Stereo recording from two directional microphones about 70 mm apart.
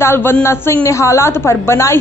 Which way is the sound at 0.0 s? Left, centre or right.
Left.